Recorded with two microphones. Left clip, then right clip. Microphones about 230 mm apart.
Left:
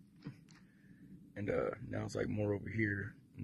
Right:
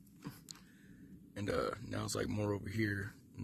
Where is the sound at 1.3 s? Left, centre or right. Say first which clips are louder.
Even; centre.